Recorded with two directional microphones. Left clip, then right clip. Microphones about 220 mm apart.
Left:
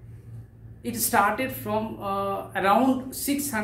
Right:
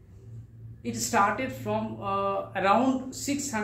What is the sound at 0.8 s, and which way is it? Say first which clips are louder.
A woman's voice: left 2 dB; 15° left (ahead or behind).